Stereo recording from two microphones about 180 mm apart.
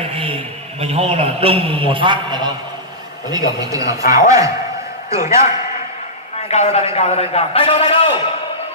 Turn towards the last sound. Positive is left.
turn(degrees=30)  # may be behind; listen again after turning